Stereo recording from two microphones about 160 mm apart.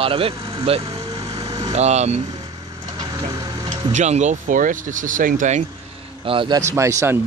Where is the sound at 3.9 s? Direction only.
45° right (ahead or behind).